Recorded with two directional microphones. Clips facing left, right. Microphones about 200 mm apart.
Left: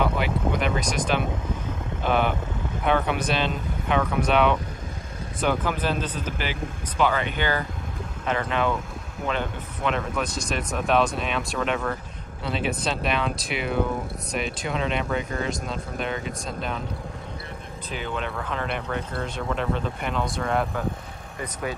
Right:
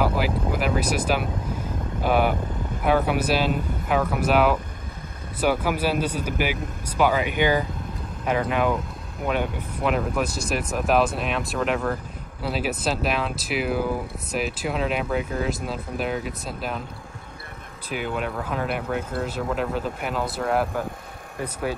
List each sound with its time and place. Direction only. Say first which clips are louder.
0.0 s speech: right 1 dB; 5° right (ahead or behind)
17.9 s speech: right 3 dB; 5° right (ahead or behind)